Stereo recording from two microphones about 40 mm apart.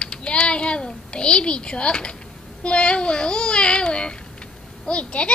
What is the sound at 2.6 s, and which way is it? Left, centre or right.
A child's voice, left.